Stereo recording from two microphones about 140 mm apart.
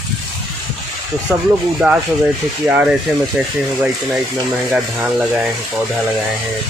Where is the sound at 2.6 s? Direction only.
10° right (ahead or behind).